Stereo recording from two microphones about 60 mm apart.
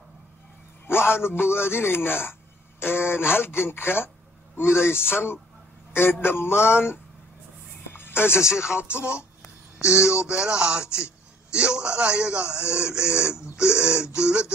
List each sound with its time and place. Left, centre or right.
0.8 s a man's voice: left
7.9 s music: left
8.9 s a man's voice: centre